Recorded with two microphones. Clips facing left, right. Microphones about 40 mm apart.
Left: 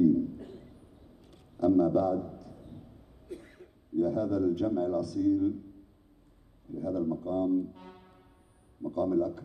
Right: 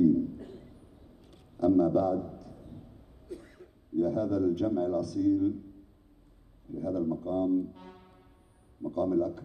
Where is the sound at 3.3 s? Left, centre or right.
Left.